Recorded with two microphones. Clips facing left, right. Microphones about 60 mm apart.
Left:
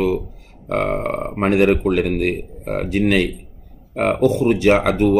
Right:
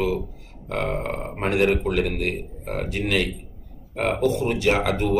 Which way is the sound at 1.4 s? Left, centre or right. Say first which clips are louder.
Left 5 dB; left.